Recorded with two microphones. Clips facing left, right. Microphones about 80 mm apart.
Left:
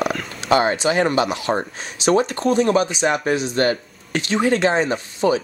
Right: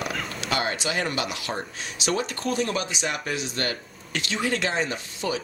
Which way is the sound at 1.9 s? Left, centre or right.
Left.